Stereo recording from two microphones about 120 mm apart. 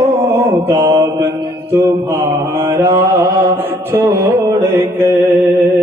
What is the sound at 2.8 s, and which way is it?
Mantra, 25° right (ahead or behind).